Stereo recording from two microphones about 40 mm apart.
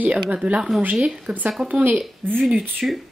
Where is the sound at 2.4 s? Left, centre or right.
Centre.